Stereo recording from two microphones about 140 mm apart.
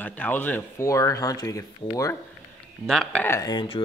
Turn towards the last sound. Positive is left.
turn(degrees=35)  # may be behind; listen again after turning